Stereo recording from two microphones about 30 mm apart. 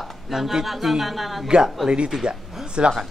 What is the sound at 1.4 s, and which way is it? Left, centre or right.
Speech, right.